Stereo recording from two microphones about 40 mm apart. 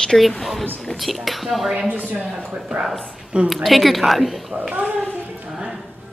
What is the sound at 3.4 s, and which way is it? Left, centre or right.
A woman's voice, centre.